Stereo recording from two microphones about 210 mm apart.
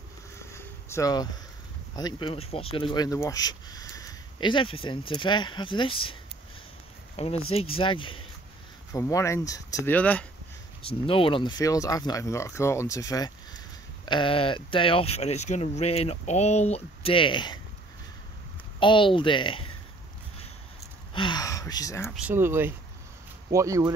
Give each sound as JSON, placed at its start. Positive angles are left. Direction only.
{"t": 0.4, "sound": "vehicle", "side_deg": 10}
{"t": 2.0, "sound": "speech", "side_deg": 20}
{"t": 7.4, "sound": "speech", "side_deg": 25}
{"t": 8.9, "sound": "speech", "side_deg": 15}
{"t": 10.8, "sound": "speech", "side_deg": 25}
{"t": 18.8, "sound": "speech", "side_deg": 25}
{"t": 21.1, "sound": "speech", "side_deg": 20}
{"t": 22.1, "sound": "speech", "side_deg": -10}